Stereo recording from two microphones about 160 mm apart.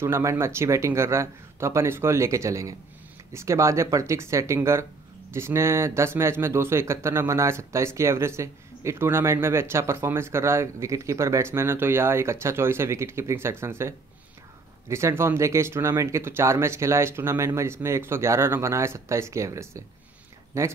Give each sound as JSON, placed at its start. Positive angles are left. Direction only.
{"t": 0.0, "sound": "speech", "side_deg": -15}